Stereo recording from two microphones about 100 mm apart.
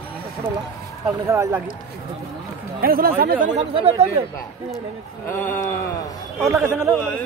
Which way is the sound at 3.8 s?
85° right.